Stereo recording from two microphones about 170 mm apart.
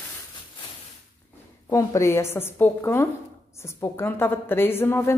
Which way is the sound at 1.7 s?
20° left (ahead or behind).